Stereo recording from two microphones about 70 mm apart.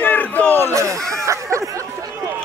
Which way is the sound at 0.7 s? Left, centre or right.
Right.